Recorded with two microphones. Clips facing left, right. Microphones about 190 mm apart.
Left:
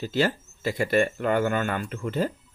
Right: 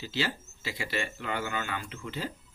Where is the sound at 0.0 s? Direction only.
50° left (ahead or behind).